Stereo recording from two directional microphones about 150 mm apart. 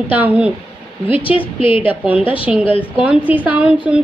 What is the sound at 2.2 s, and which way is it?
Speech, 35° left (ahead or behind).